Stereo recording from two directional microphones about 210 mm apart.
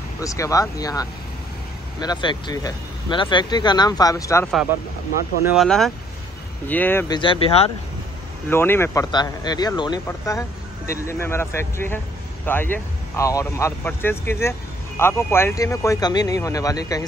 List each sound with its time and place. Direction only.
0.2 s speech: 15° left (ahead or behind)
5.4 s speech: centre (ahead or behind)
7.2 s speech: 25° left (ahead or behind)
8.5 s speech: 10° left (ahead or behind)